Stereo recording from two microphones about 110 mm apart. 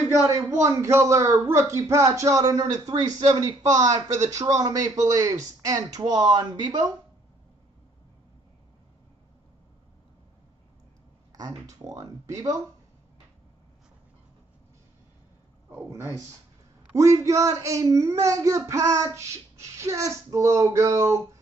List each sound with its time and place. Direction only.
0.5 s speech: 25° right (ahead or behind)
11.3 s speech: 30° right (ahead or behind)
15.7 s speech: 25° right (ahead or behind)